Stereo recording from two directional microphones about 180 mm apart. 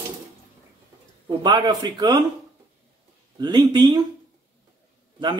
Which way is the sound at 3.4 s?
25° right (ahead or behind).